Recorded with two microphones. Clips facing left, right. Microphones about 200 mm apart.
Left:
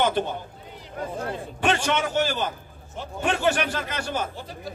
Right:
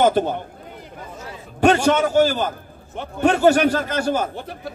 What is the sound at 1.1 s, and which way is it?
Chatter, 55° left (ahead or behind).